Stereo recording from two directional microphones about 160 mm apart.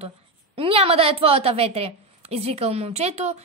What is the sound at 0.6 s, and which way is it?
A woman's voice, 35° right (ahead or behind).